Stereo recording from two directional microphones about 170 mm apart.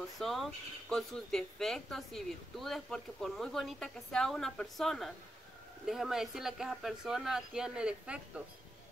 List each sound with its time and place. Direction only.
0.2 s speech: centre (ahead or behind)